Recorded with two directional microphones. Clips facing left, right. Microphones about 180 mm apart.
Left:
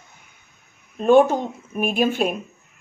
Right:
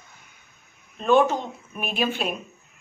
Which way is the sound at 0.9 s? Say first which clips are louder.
Left 5 dB; 50° left (ahead or behind).